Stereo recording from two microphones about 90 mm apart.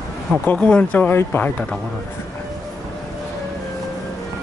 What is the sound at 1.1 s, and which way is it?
Speech, 20° left (ahead or behind).